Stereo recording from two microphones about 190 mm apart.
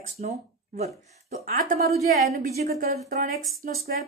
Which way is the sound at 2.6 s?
55° right (ahead or behind).